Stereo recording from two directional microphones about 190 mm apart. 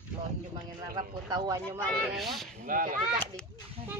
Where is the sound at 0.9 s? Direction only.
20° right (ahead or behind).